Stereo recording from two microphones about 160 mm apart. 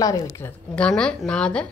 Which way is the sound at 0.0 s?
25° left (ahead or behind).